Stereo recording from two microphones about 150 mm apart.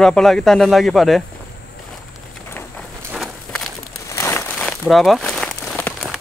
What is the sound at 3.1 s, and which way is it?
Walk, centre (ahead or behind).